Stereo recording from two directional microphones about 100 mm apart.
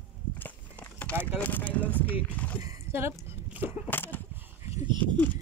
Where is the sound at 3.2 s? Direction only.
20° right (ahead or behind).